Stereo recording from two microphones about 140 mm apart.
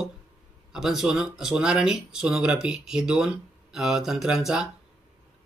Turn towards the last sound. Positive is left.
turn(degrees=-5)  # may be behind; listen again after turning